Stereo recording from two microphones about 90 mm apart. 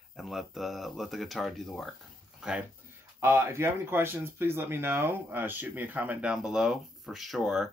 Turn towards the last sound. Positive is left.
turn(degrees=0)  # may be behind; listen again after turning